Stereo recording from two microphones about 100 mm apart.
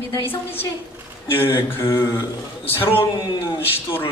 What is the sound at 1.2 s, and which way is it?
Speech, 25° left (ahead or behind).